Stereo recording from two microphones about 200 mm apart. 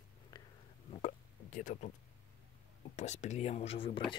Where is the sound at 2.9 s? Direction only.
35° left (ahead or behind).